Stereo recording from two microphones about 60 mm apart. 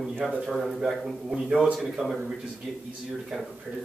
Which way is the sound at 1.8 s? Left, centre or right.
Centre.